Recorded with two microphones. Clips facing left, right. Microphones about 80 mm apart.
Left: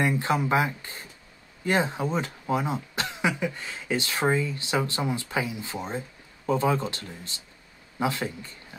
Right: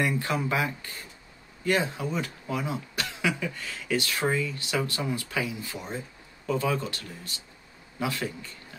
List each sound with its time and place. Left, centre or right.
0.0 s speech: left